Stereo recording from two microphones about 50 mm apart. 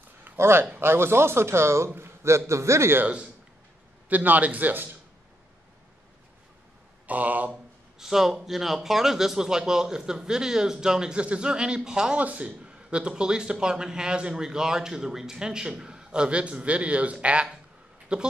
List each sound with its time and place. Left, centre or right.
0.4 s a man's voice: right
4.1 s a man's voice: right
7.1 s a man's voice: right
8.0 s speech: centre
12.2 s speech: right